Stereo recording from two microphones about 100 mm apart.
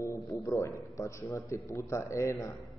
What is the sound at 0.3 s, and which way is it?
A man's voice, 30° left (ahead or behind).